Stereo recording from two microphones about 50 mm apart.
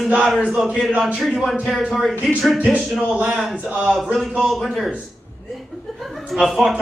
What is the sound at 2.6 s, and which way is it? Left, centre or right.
Speech, right.